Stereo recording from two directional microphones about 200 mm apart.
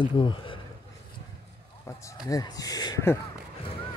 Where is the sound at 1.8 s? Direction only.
15° left (ahead or behind).